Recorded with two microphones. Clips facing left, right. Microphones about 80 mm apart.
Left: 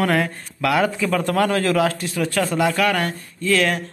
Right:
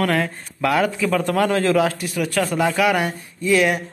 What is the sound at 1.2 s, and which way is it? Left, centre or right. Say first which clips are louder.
A man's voice: even; right.